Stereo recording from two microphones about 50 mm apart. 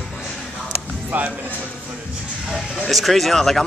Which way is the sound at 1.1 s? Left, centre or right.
Right.